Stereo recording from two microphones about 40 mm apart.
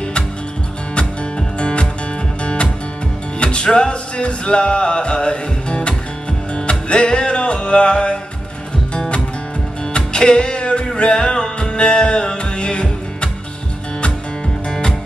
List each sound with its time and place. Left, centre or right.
1.6 s music: left
14.7 s music: centre